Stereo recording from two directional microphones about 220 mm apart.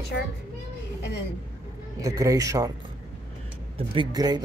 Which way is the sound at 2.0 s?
15° right (ahead or behind).